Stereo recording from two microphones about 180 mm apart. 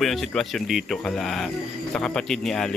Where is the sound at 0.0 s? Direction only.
Centre (ahead or behind).